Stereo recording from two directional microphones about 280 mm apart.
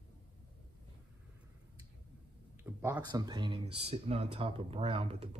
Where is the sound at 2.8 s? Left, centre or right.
Centre.